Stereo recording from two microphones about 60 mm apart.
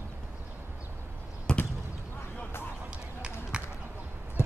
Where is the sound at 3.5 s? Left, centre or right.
Centre.